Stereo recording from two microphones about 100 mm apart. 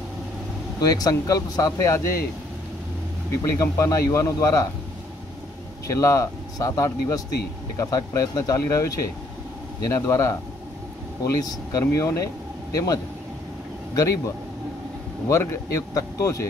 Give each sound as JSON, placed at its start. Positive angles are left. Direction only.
{"t": 0.7, "sound": "speech", "side_deg": 40}
{"t": 3.7, "sound": "speech", "side_deg": 35}
{"t": 5.9, "sound": "speech", "side_deg": 30}